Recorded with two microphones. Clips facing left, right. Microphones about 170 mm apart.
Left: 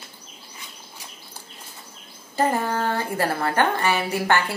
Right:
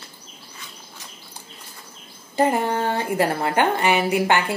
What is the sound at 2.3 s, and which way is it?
A woman's voice, 20° right (ahead or behind).